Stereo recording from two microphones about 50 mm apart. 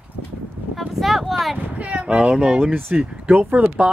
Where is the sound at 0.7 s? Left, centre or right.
Centre.